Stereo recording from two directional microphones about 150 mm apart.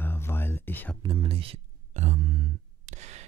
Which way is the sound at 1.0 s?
35° right (ahead or behind).